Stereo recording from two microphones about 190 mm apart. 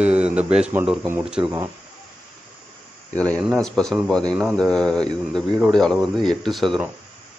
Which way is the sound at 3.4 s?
Centre (ahead or behind).